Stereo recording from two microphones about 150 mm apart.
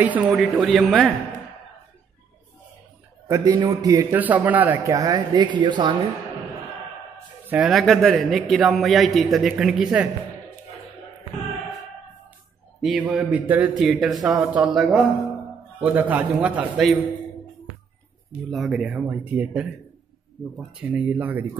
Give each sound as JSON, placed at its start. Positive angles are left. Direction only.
{"t": 0.3, "sound": "a man's voice", "side_deg": 0}
{"t": 3.3, "sound": "speech", "side_deg": -20}
{"t": 4.2, "sound": "speech", "side_deg": -10}
{"t": 7.4, "sound": "speech", "side_deg": -10}
{"t": 7.7, "sound": "a man's voice", "side_deg": 0}
{"t": 12.8, "sound": "a man's voice", "side_deg": -5}
{"t": 18.5, "sound": "a man's voice", "side_deg": 0}